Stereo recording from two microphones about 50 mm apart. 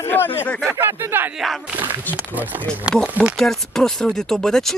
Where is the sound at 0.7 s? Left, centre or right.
Right.